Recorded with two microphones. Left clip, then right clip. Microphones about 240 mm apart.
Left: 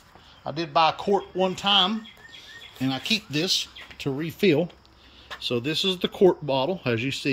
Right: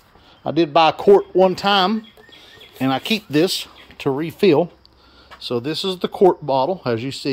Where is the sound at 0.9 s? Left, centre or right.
Right.